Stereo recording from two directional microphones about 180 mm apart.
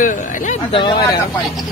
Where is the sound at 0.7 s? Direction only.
25° left (ahead or behind).